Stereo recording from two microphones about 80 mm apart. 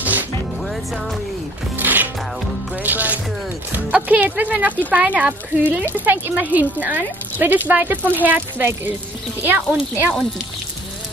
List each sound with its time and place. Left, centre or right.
0.0 s music: right
1.8 s music: right
3.7 s a woman's voice: right